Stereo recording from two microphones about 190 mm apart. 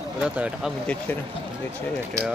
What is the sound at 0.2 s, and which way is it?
Speech, 5° right (ahead or behind).